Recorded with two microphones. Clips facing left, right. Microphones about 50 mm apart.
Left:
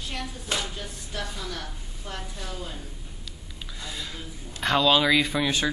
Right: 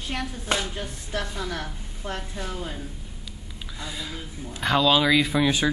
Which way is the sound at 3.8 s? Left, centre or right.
Centre.